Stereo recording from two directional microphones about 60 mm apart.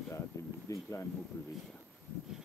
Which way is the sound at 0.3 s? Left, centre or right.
Left.